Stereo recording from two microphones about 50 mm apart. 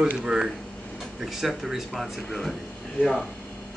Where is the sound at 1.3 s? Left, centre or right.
Centre.